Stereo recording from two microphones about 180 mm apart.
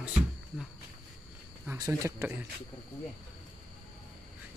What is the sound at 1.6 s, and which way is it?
Speech, 10° right (ahead or behind).